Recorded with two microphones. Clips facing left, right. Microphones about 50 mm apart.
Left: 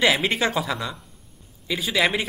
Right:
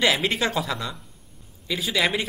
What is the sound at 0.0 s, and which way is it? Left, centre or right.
Speech, centre.